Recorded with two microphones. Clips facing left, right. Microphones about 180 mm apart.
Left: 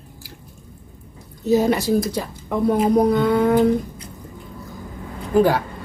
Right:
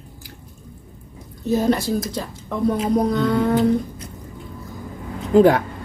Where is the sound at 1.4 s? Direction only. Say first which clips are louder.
Left 2 dB; 10° left (ahead or behind).